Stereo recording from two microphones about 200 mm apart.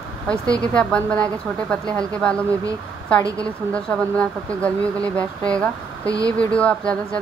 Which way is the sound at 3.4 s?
5° left (ahead or behind).